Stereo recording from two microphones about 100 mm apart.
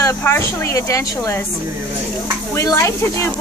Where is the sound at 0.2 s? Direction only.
25° left (ahead or behind).